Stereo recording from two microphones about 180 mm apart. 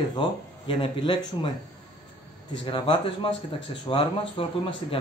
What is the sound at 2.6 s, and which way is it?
A man's voice, 30° left (ahead or behind).